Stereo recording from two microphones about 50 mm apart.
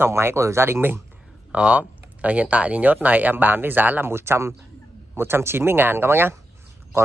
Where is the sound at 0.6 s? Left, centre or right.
Right.